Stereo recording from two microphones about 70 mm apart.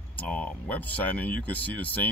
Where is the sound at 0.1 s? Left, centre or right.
Left.